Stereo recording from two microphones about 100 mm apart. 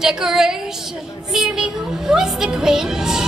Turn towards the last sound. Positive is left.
turn(degrees=-5)  # may be behind; listen again after turning